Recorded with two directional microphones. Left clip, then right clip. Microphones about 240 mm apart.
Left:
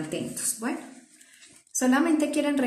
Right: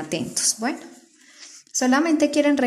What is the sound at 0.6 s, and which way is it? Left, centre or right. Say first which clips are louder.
A woman's voice: right 5 dB; right.